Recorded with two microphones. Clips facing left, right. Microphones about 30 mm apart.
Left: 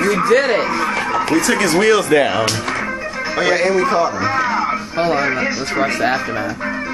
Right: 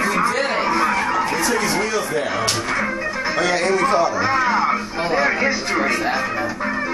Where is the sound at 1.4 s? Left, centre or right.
Left.